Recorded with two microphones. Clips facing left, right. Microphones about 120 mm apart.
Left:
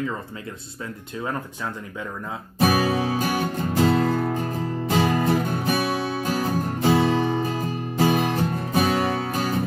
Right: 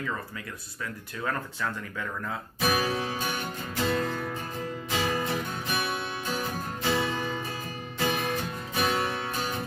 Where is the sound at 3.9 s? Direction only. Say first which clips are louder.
Left 4 dB; 35° left (ahead or behind).